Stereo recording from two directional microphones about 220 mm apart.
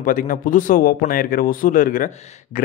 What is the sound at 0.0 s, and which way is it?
Speech, 35° left (ahead or behind).